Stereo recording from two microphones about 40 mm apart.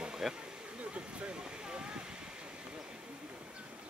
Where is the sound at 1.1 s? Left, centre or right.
Right.